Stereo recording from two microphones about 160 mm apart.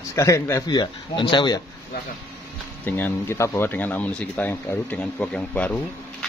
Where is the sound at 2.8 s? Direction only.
10° left (ahead or behind).